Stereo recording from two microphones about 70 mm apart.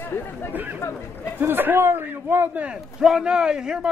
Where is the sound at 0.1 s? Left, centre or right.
Left.